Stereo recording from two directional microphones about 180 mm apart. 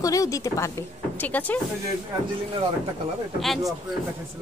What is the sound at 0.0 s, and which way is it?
A woman's voice, 20° left (ahead or behind).